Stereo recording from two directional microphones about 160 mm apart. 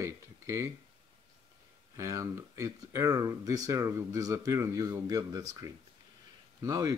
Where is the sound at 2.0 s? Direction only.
20° right (ahead or behind).